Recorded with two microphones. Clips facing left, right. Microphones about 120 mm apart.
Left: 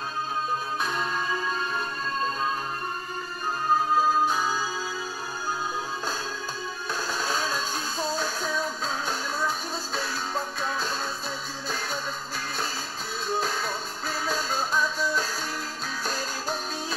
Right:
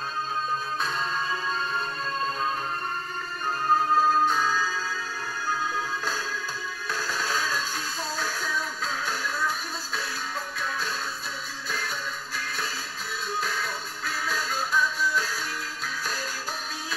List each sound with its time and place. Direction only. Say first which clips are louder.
4.1 s music: right 1 dB; 10° left (ahead or behind)
7.1 s music: even; 20° left (ahead or behind)
10.6 s music: left 2 dB; 30° left (ahead or behind)
13.4 s music: left 2 dB; 30° left (ahead or behind)